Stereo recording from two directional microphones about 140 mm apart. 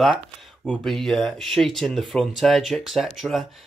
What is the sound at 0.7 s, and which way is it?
Speech, centre (ahead or behind).